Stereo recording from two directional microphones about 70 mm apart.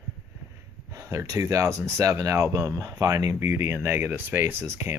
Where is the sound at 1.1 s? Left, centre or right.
Right.